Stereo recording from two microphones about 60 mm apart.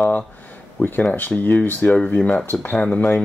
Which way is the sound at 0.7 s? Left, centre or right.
Left.